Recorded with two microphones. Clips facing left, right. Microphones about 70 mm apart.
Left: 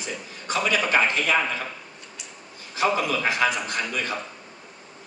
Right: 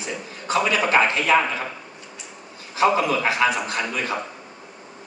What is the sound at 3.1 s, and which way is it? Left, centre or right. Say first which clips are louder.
Speech: right 3 dB; centre.